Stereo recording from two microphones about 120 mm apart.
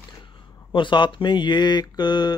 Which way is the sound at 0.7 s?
40° left (ahead or behind).